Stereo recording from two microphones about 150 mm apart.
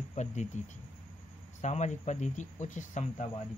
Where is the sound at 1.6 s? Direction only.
50° left (ahead or behind).